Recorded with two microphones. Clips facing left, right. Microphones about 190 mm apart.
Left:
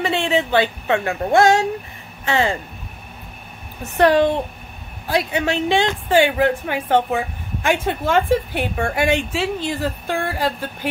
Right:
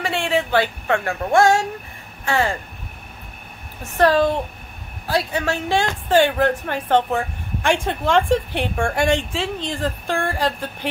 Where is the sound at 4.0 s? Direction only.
15° left (ahead or behind).